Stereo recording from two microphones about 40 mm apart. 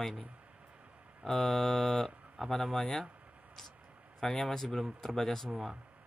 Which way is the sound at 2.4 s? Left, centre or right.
Centre.